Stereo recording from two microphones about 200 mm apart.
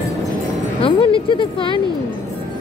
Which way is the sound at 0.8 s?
25° left (ahead or behind).